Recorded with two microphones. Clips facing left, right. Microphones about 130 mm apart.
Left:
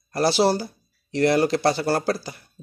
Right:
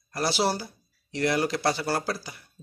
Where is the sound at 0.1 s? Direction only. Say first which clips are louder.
Left 6 dB; 40° left (ahead or behind).